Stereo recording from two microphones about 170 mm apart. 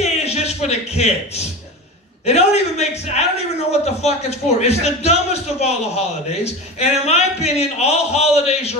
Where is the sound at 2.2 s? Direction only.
40° left (ahead or behind).